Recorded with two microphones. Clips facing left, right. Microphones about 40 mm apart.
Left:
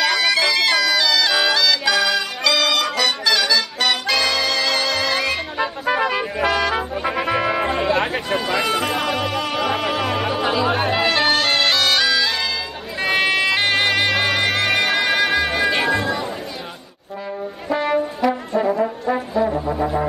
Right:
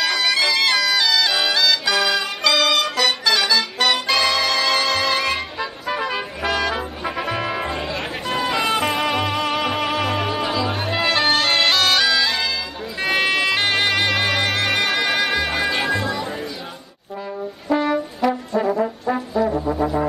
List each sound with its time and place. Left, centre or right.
0.0 s music: centre
5.6 s music: centre
8.6 s music: centre
18.3 s brass instrument: centre
19.5 s music: centre